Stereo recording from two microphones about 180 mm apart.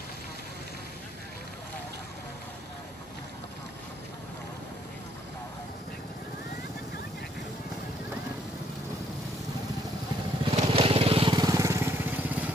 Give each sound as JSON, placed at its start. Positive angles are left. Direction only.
{"t": 10.5, "sound": "vehicle", "side_deg": -30}